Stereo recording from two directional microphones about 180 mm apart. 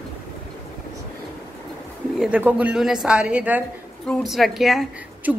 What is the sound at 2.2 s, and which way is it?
A woman's voice, 10° right (ahead or behind).